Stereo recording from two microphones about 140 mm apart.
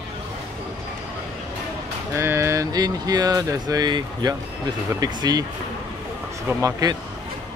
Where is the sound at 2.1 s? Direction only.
20° right (ahead or behind).